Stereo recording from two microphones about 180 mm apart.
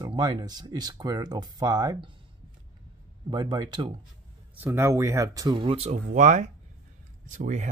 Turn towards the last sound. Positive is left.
turn(degrees=-45)  # may be behind; listen again after turning